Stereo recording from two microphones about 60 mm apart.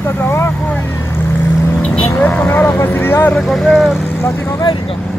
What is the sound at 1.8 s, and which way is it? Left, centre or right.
Vehicle, centre.